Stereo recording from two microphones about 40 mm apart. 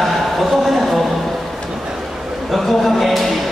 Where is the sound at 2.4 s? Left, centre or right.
Centre.